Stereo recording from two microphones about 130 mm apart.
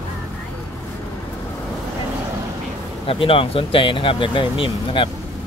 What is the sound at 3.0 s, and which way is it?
Speech, 45° left (ahead or behind).